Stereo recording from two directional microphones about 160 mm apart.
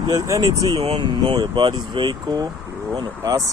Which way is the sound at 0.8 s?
40° right (ahead or behind).